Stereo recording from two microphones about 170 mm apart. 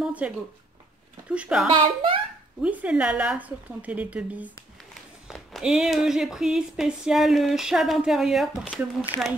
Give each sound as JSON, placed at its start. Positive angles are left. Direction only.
{"t": 0.0, "sound": "a sound", "side_deg": -5}
{"t": 1.3, "sound": "speech", "side_deg": -5}
{"t": 1.7, "sound": "speech", "side_deg": -30}
{"t": 2.6, "sound": "a woman's voice", "side_deg": -10}